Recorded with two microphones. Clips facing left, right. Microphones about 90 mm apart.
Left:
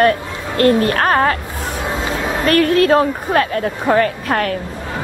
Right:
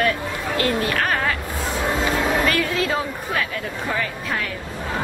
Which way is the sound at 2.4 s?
55° left (ahead or behind).